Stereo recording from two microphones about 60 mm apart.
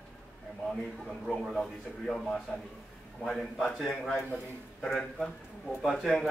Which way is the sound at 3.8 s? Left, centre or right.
Centre.